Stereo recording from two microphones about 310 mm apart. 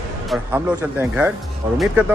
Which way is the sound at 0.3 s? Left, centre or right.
Centre.